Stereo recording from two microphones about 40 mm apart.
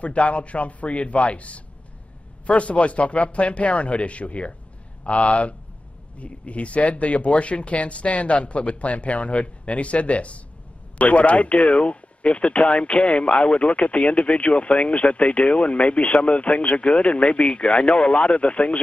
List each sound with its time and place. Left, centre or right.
0.0 s speech: left